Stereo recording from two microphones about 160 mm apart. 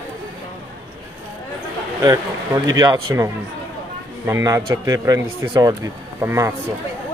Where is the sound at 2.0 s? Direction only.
25° right (ahead or behind).